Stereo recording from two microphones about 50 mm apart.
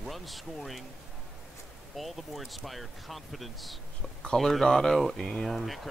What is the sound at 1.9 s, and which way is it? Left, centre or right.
Speech, centre.